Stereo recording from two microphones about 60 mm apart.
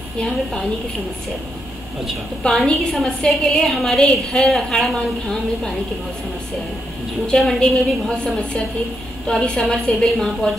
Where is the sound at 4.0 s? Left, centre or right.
Centre.